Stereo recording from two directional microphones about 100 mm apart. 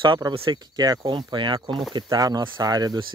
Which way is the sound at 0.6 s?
40° right (ahead or behind).